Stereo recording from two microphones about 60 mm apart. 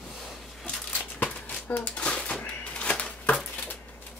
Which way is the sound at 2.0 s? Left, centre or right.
Centre.